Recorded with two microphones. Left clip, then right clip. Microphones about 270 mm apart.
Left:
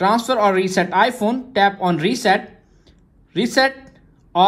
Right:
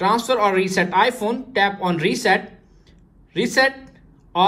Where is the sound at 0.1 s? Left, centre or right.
Left.